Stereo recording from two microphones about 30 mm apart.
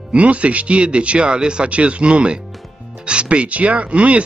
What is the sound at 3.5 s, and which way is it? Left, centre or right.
Speech, right.